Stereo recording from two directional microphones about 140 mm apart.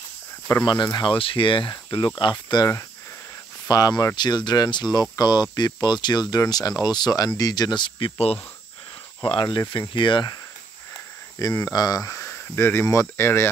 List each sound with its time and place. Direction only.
0.8 s speech: 35° left (ahead or behind)
11.3 s speech: 25° left (ahead or behind)